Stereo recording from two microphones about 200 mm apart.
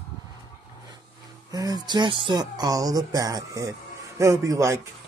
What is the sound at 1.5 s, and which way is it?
Speech, 20° right (ahead or behind).